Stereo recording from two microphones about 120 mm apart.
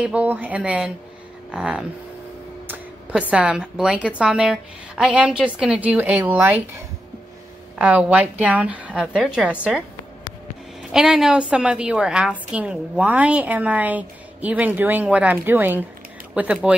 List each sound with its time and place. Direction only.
0.0 s a woman's voice: 10° right (ahead or behind)
7.8 s a woman's voice: 10° right (ahead or behind)